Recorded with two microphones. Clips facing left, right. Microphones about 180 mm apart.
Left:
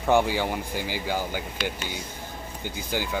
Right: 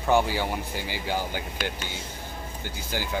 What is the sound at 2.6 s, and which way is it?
Speech, 15° left (ahead or behind).